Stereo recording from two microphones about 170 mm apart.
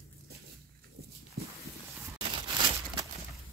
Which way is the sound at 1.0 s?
65° right (ahead or behind).